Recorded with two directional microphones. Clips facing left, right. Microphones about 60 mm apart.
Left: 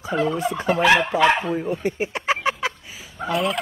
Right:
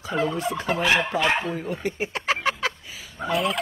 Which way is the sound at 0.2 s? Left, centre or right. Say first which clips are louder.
Left 2 dB; left.